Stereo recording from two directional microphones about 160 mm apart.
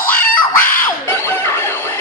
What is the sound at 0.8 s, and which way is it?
Music, 15° left (ahead or behind).